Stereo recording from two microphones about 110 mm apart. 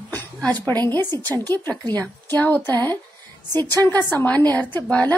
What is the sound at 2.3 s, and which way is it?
A woman's voice, 15° left (ahead or behind).